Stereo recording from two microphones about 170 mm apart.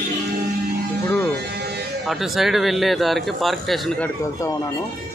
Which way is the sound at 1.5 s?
75° right (ahead or behind).